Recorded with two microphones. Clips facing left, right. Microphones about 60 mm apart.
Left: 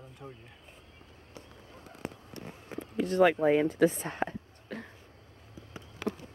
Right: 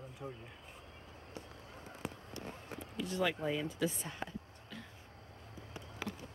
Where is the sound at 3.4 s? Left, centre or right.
Left.